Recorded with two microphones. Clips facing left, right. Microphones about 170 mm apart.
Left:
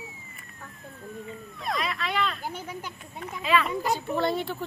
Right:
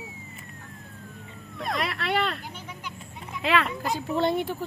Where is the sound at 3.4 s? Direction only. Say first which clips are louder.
Even; 75° right (ahead or behind).